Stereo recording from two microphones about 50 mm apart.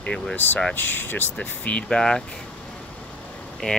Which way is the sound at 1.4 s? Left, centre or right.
Left.